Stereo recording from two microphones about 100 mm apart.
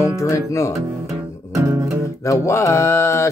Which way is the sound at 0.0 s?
30° left (ahead or behind).